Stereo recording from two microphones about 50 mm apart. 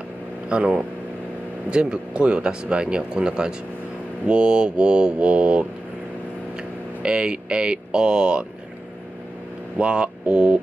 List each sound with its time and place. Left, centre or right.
0.5 s speech: centre
7.0 s speech: centre
9.8 s a sound: right